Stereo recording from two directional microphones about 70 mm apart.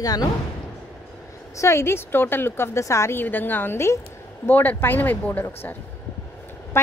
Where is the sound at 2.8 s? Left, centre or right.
Left.